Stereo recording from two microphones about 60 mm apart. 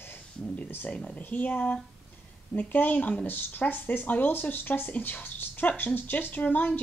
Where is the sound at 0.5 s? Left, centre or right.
Left.